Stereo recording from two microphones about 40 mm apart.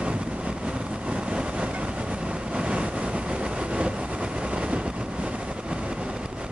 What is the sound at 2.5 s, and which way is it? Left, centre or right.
Vehicle, right.